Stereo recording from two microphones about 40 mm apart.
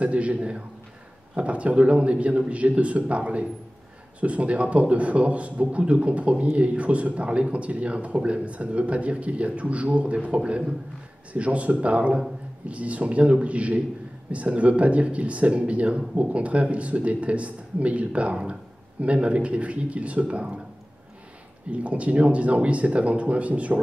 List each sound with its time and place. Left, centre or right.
0.0 s speech: right
21.6 s speech: right